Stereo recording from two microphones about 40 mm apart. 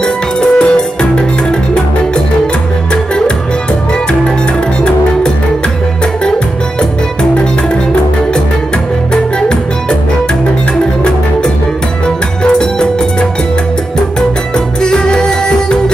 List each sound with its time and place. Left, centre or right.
0.0 s music: left
9.1 s music: centre
14.8 s music: centre